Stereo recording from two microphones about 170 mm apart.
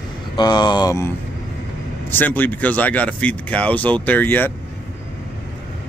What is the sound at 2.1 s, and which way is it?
Speech, 10° left (ahead or behind).